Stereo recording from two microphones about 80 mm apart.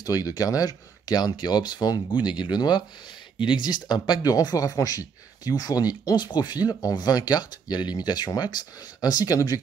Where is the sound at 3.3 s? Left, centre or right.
Left.